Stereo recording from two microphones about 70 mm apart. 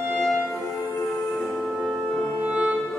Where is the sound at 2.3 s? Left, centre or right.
Centre.